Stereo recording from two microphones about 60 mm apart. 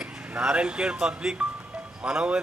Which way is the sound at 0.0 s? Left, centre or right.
Centre.